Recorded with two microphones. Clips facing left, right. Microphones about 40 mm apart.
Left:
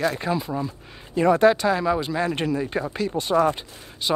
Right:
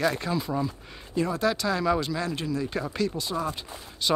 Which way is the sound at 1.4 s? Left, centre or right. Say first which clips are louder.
Left 8 dB; left.